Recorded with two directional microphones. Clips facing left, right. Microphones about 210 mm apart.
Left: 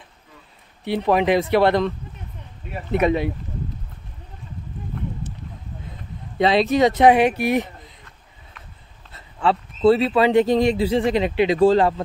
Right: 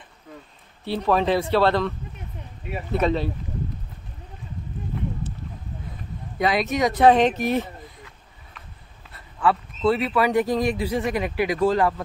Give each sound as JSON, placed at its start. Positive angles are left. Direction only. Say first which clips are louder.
{"t": 0.8, "sound": "speech", "louder": "left 3 dB", "side_deg": 15}
{"t": 6.3, "sound": "speech", "louder": "left 5 dB", "side_deg": 25}
{"t": 7.2, "sound": "speech", "louder": "left 2 dB", "side_deg": 10}
{"t": 9.1, "sound": "speech", "louder": "left 1 dB", "side_deg": 25}